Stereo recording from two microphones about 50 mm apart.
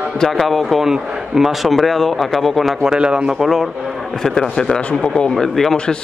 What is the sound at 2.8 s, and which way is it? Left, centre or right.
Speech, centre.